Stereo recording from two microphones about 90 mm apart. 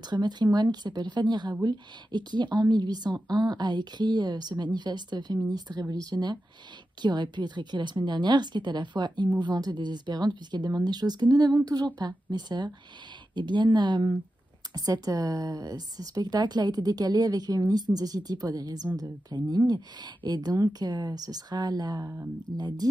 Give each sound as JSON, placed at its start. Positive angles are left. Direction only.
{"t": 0.1, "sound": "a woman's voice", "side_deg": -50}
{"t": 14.7, "sound": "speech", "side_deg": -40}